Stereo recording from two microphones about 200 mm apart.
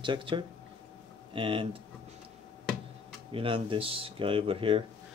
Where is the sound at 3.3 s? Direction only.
25° right (ahead or behind).